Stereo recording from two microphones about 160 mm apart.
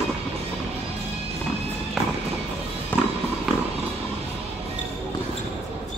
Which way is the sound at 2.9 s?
10° left (ahead or behind).